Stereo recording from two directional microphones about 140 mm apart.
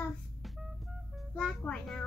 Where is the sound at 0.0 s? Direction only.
Centre (ahead or behind).